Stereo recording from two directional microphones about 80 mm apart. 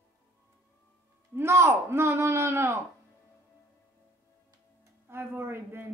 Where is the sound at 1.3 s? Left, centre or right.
Right.